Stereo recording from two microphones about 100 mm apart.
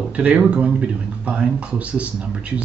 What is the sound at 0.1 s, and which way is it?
Speech, 15° right (ahead or behind).